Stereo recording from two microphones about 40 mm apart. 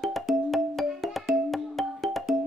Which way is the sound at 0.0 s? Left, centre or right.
Centre.